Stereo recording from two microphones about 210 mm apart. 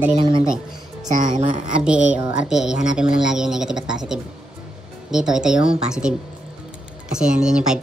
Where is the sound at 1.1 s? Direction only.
35° right (ahead or behind).